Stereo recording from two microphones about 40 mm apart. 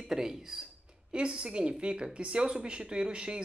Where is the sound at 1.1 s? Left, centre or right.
Right.